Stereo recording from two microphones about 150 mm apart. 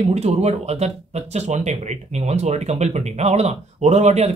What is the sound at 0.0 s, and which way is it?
Speech, 45° right (ahead or behind).